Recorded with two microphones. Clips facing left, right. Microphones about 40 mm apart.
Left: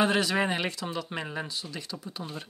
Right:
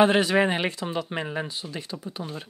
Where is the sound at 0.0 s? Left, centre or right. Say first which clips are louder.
Right 6 dB; right.